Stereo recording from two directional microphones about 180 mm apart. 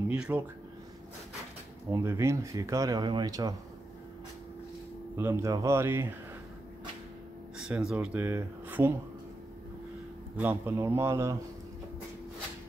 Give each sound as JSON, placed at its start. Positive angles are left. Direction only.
{"t": 0.1, "sound": "speech", "side_deg": -5}
{"t": 1.9, "sound": "speech", "side_deg": -15}
{"t": 5.1, "sound": "speech", "side_deg": -15}
{"t": 7.5, "sound": "a sound", "side_deg": -5}
{"t": 8.0, "sound": "speech", "side_deg": -10}
{"t": 10.3, "sound": "speech", "side_deg": -10}